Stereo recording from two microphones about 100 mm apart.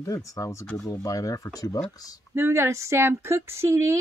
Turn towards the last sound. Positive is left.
turn(degrees=-25)  # may be behind; listen again after turning